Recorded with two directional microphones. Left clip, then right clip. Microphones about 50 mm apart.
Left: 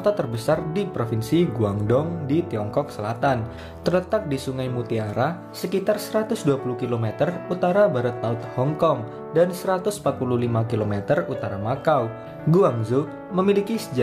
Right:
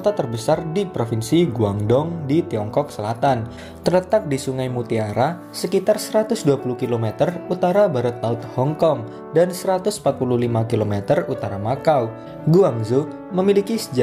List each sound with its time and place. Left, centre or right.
0.0 s speech: centre
0.5 s speech: right
1.1 s speech: right
2.2 s speech: right
2.7 s speech: right
7.4 s speech: right
10.9 s speech: right
11.1 s speech: right
12.4 s speech: right
13.5 s speech: right